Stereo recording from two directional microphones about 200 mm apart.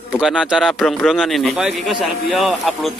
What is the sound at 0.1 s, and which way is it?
Speech, centre (ahead or behind).